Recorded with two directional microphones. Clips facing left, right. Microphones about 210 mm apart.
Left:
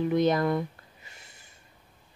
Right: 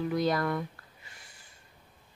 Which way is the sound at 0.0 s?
20° left (ahead or behind).